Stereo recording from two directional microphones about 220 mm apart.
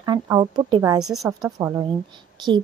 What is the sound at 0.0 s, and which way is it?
Speech, 15° right (ahead or behind).